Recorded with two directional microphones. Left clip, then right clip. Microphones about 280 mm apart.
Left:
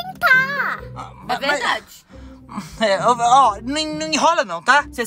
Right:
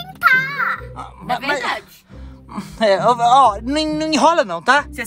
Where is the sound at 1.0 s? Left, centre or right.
Centre.